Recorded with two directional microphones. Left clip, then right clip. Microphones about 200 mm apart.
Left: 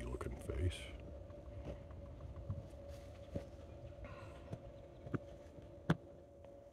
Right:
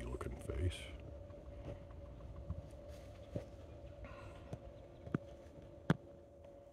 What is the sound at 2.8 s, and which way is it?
Patter, 30° right (ahead or behind).